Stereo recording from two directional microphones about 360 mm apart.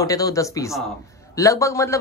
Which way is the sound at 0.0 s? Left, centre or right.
Centre.